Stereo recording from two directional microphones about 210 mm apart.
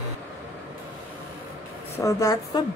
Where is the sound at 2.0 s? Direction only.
15° left (ahead or behind).